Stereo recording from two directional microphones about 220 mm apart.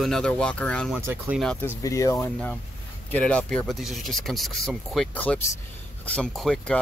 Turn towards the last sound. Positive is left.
turn(degrees=5)  # may be behind; listen again after turning